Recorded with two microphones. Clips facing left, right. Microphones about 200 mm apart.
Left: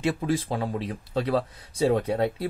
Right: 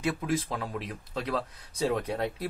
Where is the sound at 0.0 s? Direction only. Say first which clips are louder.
Left 4 dB; 30° left (ahead or behind).